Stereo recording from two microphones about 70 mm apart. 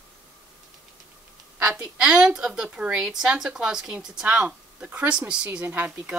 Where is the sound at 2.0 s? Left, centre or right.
Centre.